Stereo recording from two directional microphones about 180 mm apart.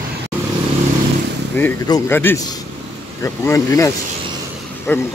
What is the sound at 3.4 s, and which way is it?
Speech, 15° left (ahead or behind).